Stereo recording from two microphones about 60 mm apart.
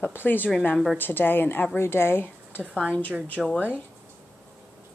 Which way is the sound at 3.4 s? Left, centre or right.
Centre.